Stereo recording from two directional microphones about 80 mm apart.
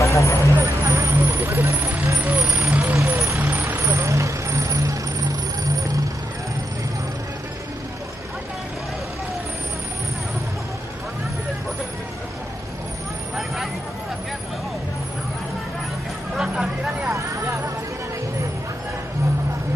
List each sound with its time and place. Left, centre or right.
0.0 s vehicle: left
0.4 s vehicle: right
2.1 s speech: right
2.8 s vehicle: right
3.3 s vehicle: right
16.3 s a sound: centre